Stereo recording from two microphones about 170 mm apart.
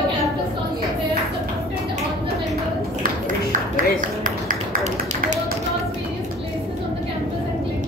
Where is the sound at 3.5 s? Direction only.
50° right (ahead or behind).